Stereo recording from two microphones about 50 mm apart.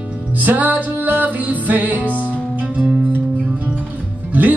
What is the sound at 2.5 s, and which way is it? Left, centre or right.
Music, right.